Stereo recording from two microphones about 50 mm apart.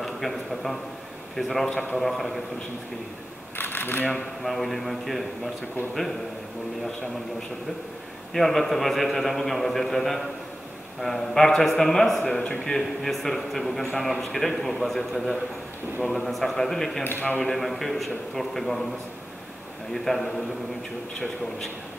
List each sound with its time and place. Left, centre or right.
0.0 s a man's voice: centre
3.5 s a sound: left
4.4 s a man's voice: centre
8.3 s a man's voice: centre
19.9 s a man's voice: centre